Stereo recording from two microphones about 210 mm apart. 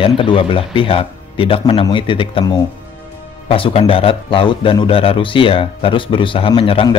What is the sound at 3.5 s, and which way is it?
Speech, 25° left (ahead or behind).